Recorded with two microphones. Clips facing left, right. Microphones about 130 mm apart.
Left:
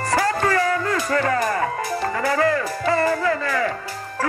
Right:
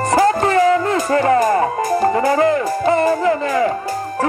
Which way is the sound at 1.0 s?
35° right (ahead or behind).